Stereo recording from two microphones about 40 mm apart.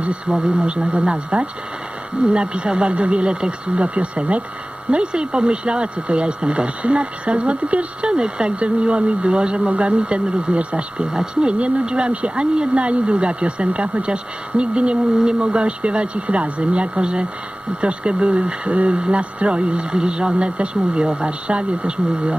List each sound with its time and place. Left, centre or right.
0.0 s speech: right
11.1 s speech: right
15.1 s speech: centre
15.4 s speech: right